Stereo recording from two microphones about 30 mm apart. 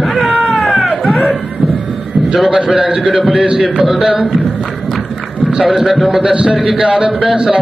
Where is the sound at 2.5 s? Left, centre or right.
Right.